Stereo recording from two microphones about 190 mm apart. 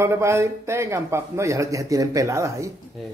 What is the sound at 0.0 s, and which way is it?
Speech, 15° right (ahead or behind).